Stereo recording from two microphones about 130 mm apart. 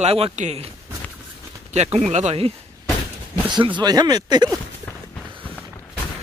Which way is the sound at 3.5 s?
35° right (ahead or behind).